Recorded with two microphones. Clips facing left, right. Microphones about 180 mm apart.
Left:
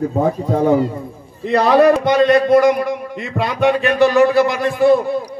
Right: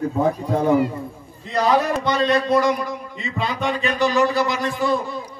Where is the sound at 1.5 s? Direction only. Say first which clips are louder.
Left 8 dB; 65° left (ahead or behind).